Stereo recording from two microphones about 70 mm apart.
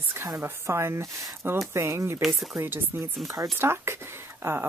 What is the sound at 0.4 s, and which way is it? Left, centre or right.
Speech, right.